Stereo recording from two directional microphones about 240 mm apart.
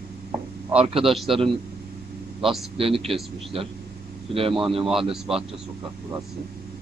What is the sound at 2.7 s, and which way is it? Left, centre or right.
Speech, right.